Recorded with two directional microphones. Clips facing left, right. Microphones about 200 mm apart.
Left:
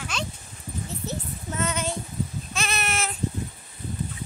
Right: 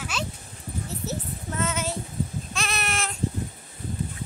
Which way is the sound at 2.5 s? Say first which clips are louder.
Left 1 dB; centre (ahead or behind).